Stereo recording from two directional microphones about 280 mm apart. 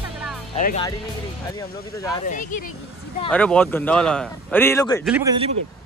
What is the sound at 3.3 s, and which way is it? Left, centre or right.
A man's voice, centre.